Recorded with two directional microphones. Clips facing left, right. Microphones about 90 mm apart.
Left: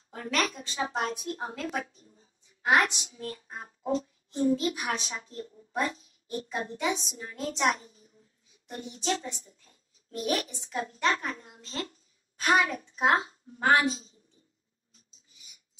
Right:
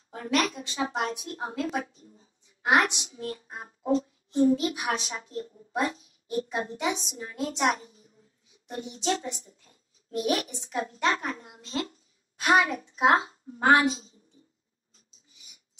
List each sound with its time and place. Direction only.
0.1 s a woman's voice: 30° right (ahead or behind)